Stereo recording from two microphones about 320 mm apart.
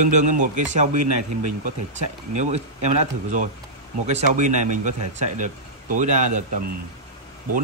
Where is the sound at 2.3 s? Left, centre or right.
Right.